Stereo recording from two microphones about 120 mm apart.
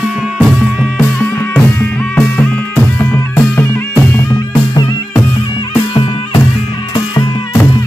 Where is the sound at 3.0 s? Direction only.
20° left (ahead or behind).